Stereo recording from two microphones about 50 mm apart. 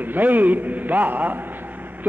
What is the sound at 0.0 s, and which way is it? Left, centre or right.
A man's voice, right.